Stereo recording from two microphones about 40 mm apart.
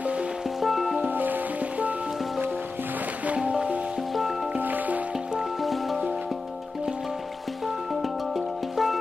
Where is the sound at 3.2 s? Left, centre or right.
Right.